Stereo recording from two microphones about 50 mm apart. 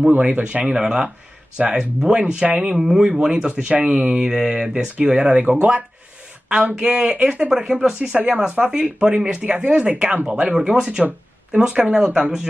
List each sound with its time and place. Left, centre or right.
0.1 s speech: right
5.2 s speech: right